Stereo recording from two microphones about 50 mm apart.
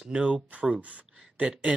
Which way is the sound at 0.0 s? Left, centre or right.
Right.